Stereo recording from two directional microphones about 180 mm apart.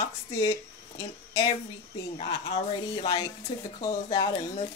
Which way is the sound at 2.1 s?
30° left (ahead or behind).